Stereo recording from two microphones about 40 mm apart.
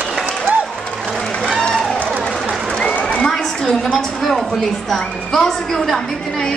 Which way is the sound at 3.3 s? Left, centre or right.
Centre.